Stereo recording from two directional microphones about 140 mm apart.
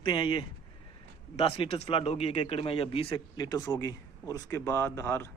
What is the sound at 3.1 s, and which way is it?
Speech, 30° left (ahead or behind).